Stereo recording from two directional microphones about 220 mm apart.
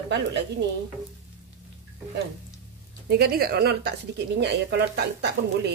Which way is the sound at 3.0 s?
45° right (ahead or behind).